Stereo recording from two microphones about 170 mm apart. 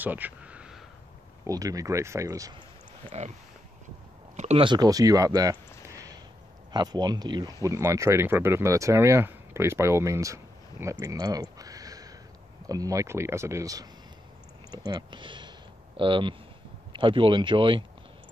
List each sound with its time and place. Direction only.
0.0 s a sound: 10° right (ahead or behind)
1.4 s speech: 20° right (ahead or behind)
3.1 s speech: 40° right (ahead or behind)
4.4 s speech: 35° right (ahead or behind)
11.5 s a sound: 20° right (ahead or behind)
12.6 s speech: 20° right (ahead or behind)
14.9 s speech: 25° right (ahead or behind)